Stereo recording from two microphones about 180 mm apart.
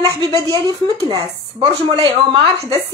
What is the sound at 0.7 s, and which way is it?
A woman's voice, 20° right (ahead or behind).